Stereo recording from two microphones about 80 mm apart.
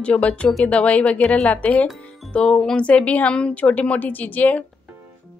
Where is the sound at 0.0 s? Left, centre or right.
Centre.